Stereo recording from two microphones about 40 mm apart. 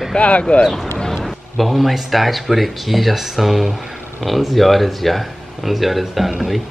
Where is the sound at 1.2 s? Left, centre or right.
Centre.